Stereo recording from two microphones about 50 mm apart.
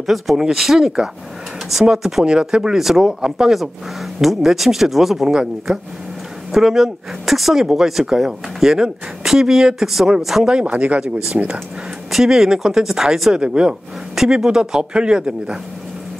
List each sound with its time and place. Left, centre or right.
0.0 s speech: centre
10.6 s speech: right
12.1 s speech: centre
14.1 s speech: centre